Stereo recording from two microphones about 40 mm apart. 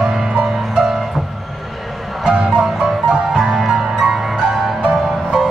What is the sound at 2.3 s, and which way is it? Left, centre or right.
Music, right.